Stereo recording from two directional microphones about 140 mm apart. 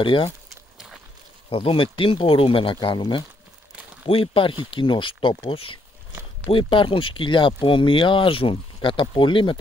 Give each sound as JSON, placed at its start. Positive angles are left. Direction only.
{"t": 0.0, "sound": "speech", "side_deg": 35}
{"t": 0.5, "sound": "a sound", "side_deg": 0}
{"t": 1.5, "sound": "speech", "side_deg": 40}